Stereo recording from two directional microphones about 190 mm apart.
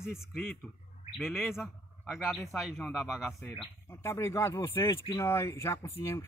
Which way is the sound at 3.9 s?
15° left (ahead or behind).